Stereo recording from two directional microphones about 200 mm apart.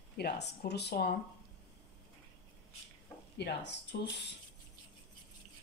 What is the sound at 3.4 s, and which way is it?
Dishes, 55° left (ahead or behind).